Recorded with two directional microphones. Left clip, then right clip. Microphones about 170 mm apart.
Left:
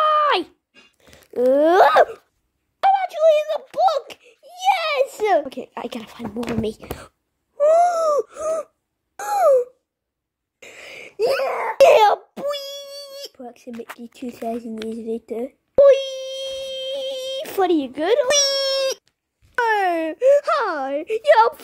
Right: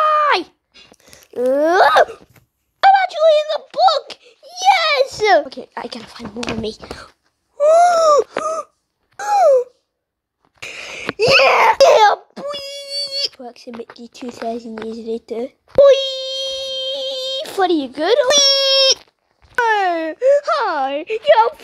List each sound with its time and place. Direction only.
0.0 s a sound: 5° left (ahead or behind)
1.4 s speech: 10° left (ahead or behind)
1.9 s wail: 5° left (ahead or behind)
2.8 s giggle: centre (ahead or behind)
5.5 s speech: 15° left (ahead or behind)
7.5 s wheeze: 5° left (ahead or behind)
7.9 s wheeze: 15° right (ahead or behind)
9.2 s a sound: 5° left (ahead or behind)
10.6 s wheeze: centre (ahead or behind)
11.4 s baby laughter: 30° right (ahead or behind)
11.8 s wail: 10° left (ahead or behind)
12.6 s a sound: centre (ahead or behind)